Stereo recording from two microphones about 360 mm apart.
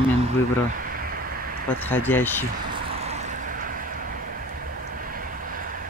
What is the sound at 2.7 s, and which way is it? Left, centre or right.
Vehicle, right.